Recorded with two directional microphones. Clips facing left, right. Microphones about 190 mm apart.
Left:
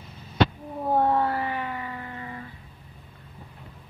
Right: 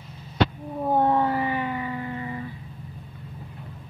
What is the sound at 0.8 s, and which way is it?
Cat, centre (ahead or behind).